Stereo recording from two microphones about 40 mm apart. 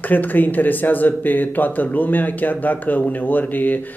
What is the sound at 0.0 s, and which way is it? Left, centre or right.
Speech, left.